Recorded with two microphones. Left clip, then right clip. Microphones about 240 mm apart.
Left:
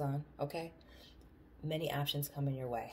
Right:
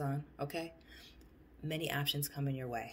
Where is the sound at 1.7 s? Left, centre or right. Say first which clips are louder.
Right 1 dB; right.